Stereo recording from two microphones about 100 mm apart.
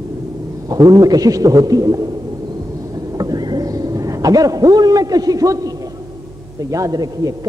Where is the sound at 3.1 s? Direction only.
40° right (ahead or behind).